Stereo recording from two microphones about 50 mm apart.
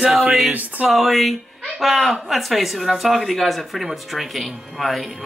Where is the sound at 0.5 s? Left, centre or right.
Right.